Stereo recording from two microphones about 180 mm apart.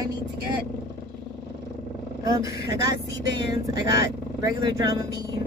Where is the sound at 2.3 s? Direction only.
20° right (ahead or behind).